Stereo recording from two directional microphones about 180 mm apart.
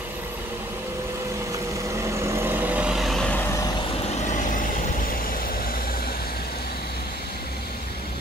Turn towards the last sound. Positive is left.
turn(degrees=60)  # may be behind; listen again after turning